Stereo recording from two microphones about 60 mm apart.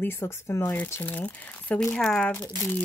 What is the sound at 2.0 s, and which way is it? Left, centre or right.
Speech, centre.